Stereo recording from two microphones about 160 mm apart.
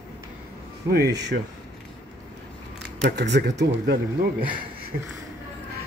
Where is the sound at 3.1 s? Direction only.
90° right.